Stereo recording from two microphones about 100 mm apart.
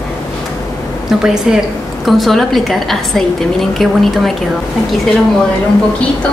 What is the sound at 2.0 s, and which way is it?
A woman's voice, centre (ahead or behind).